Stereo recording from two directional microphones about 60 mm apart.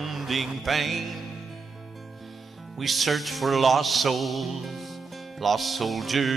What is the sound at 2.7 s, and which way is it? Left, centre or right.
Music, centre.